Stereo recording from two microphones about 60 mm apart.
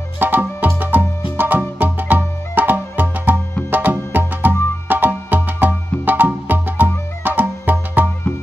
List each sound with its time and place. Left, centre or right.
0.2 s music: right